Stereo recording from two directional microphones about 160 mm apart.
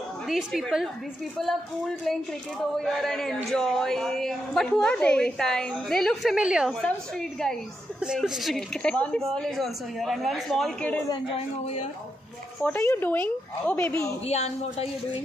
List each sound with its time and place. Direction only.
0.3 s a woman's voice: centre (ahead or behind)
2.8 s a woman's voice: centre (ahead or behind)
11.1 s a woman's voice: 35° left (ahead or behind)
12.6 s speech: 15° left (ahead or behind)
14.2 s a woman's voice: 40° left (ahead or behind)